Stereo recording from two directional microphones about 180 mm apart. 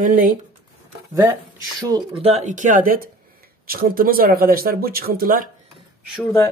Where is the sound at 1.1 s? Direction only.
20° right (ahead or behind); by 5.5 s 55° right (ahead or behind).